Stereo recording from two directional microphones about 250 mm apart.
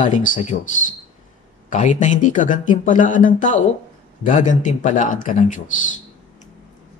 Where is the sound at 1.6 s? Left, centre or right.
Left.